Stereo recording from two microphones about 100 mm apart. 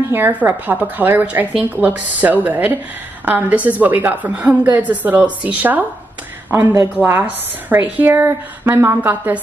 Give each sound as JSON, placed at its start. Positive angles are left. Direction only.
{"t": 0.1, "sound": "a woman's voice", "side_deg": -20}